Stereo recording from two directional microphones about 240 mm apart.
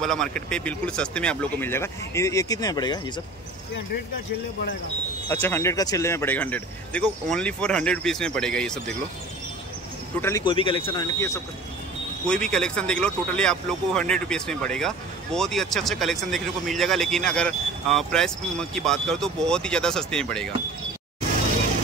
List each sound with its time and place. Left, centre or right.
0.0 s a man's voice: centre
5.3 s a man's voice: centre
10.2 s a man's voice: centre